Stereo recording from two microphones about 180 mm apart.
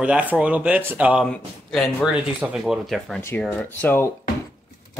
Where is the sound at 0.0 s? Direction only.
5° right (ahead or behind).